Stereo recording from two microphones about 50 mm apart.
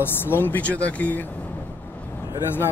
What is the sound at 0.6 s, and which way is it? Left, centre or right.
Speech, left.